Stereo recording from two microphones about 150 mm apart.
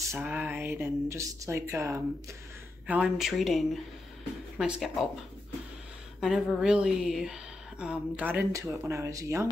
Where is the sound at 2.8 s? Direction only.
10° right (ahead or behind).